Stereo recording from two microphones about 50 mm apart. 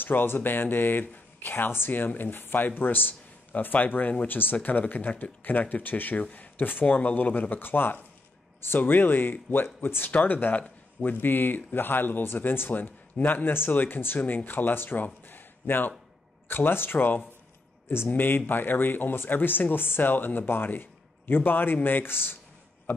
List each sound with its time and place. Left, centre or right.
0.0 s speech: left
15.2 s a sound: left
16.4 s speech: left